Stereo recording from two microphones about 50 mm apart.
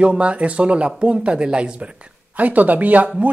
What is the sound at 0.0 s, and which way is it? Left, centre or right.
Speech, right.